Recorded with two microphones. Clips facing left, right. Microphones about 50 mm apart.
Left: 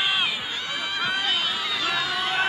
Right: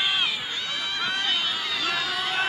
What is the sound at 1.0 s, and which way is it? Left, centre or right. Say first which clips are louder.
Run: left 2 dB; centre.